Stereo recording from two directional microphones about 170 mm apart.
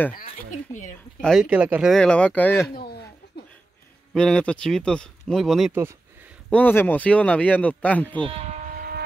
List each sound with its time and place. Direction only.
0.1 s speech: 50° left (ahead or behind)
1.2 s speech: centre (ahead or behind)
4.1 s speech: 5° left (ahead or behind)
6.5 s speech: 10° left (ahead or behind)
8.2 s a sound: 35° right (ahead or behind); by 9.0 s 60° right (ahead or behind)